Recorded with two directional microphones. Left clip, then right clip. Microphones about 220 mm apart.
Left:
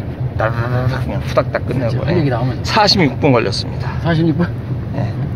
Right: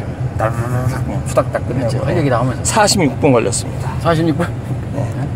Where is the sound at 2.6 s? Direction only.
10° right (ahead or behind).